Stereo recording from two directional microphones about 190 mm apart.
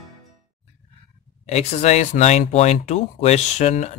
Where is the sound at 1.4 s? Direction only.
35° left (ahead or behind).